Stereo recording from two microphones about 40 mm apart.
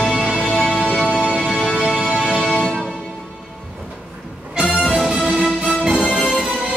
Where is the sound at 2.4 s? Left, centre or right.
Centre.